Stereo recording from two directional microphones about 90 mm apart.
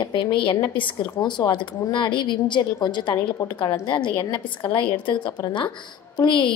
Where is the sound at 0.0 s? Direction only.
65° left (ahead or behind).